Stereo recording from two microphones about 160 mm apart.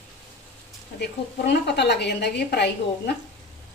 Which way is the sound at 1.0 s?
90° left.